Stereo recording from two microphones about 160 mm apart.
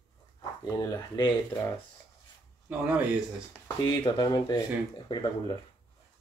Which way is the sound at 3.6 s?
25° left (ahead or behind).